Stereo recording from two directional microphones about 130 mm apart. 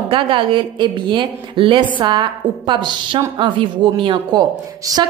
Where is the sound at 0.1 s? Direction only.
40° right (ahead or behind).